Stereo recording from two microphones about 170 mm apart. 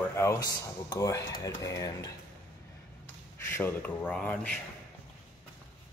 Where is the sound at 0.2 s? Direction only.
20° left (ahead or behind).